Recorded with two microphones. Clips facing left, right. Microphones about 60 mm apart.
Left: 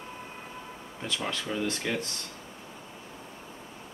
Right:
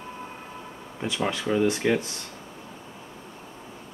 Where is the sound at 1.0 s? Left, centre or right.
Centre.